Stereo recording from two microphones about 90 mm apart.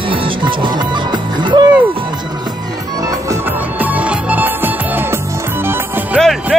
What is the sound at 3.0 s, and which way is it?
Music, 40° right (ahead or behind).